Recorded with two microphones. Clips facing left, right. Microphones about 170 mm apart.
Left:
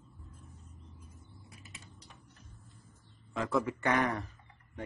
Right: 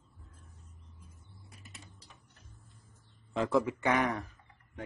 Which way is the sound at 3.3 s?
25° right (ahead or behind).